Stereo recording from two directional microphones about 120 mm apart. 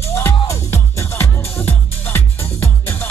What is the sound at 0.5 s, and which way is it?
Music, 20° left (ahead or behind).